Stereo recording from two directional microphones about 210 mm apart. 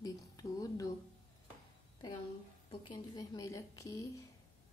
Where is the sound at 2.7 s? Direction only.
20° left (ahead or behind).